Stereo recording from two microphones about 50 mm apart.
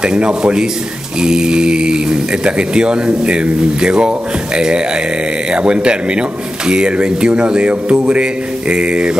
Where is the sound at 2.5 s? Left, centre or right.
Centre.